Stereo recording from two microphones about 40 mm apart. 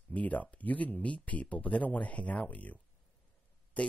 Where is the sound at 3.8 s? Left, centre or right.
Left.